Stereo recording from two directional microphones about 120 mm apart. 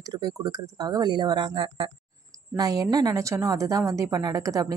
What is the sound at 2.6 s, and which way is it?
A woman's voice, 30° right (ahead or behind).